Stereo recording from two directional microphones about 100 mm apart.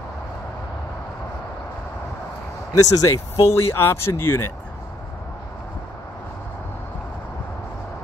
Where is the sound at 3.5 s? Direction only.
25° left (ahead or behind).